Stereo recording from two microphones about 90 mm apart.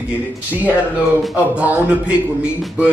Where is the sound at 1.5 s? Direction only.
15° right (ahead or behind).